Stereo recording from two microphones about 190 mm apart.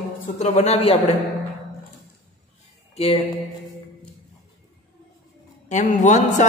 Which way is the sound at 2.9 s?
30° left (ahead or behind).